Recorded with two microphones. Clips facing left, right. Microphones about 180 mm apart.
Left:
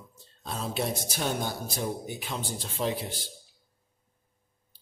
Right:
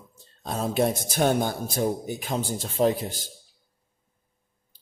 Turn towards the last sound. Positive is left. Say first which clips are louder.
# right 8 dB
turn(degrees=-45)  # may be behind; listen again after turning